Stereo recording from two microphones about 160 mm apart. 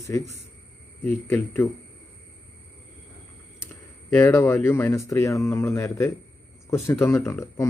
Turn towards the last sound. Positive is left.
turn(degrees=15)  # may be behind; listen again after turning